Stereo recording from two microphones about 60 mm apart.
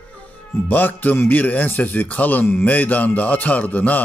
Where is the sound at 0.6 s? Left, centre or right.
Left.